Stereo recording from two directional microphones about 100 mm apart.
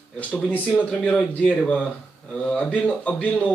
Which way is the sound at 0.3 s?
15° left (ahead or behind).